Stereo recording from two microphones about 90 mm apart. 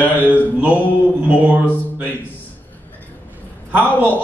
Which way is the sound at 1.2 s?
15° right (ahead or behind).